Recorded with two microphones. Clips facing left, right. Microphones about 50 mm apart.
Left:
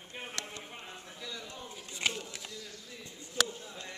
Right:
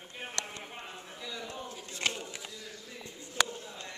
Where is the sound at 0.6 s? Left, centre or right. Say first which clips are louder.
Right 2 dB; centre.